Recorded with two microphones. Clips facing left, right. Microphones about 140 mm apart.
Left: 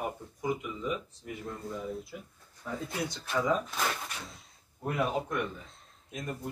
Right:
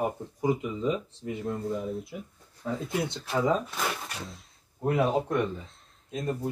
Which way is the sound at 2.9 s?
25° right (ahead or behind).